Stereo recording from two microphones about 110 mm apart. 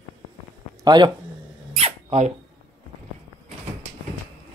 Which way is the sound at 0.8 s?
40° right (ahead or behind).